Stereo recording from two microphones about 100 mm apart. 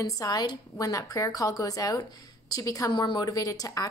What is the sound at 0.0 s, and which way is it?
Speech, 35° left (ahead or behind).